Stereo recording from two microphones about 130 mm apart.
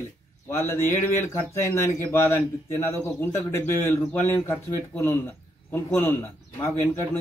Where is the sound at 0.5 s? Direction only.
20° left (ahead or behind).